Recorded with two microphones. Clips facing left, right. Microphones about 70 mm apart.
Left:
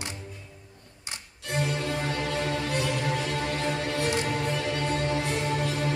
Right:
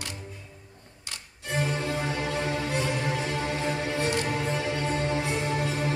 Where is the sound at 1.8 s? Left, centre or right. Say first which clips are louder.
Even; centre.